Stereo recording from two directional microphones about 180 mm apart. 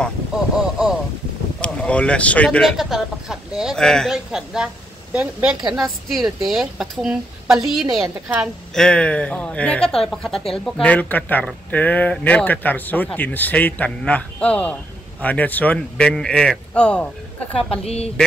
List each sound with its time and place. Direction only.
1.6 s speech: 5° left (ahead or behind)
17.6 s a woman's voice: 35° left (ahead or behind)